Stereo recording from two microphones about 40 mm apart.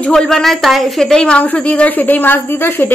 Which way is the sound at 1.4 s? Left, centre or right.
Left.